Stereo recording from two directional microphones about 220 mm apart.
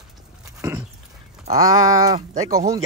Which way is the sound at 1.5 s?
15° right (ahead or behind).